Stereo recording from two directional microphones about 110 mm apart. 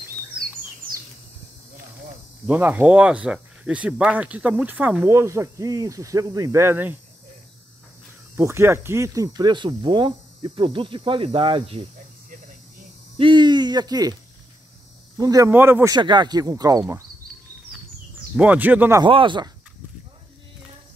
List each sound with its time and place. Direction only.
2.4 s speech: 15° right (ahead or behind)
5.0 s speech: 25° right (ahead or behind)
8.4 s speech: 25° right (ahead or behind); by 11.8 s 55° right (ahead or behind)
13.2 s speech: 45° right (ahead or behind)
15.1 s speech: 35° right (ahead or behind)
15.5 s speech: 20° right (ahead or behind)
15.9 s speech: 45° right (ahead or behind)
18.3 s speech: 15° right (ahead or behind)
19.0 s speech: 50° right (ahead or behind)